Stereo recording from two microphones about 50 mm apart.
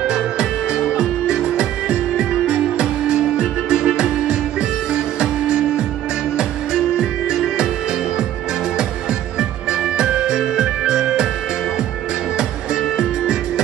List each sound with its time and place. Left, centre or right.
0.0 s music: centre
9.4 s music: centre
12.9 s music: centre